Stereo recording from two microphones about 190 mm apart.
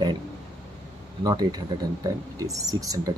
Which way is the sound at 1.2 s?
20° right (ahead or behind).